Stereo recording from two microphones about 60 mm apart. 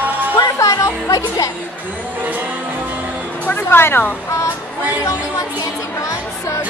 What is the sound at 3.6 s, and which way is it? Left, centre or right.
Speech, left.